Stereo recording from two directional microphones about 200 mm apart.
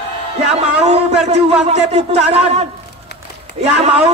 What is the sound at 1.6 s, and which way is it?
A man's voice, 35° right (ahead or behind).